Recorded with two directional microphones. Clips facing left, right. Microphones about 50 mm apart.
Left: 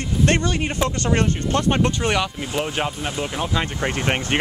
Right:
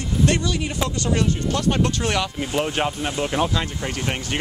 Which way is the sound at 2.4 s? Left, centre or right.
Centre.